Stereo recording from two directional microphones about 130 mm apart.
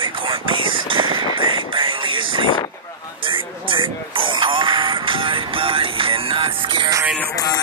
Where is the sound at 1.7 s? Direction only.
40° right (ahead or behind).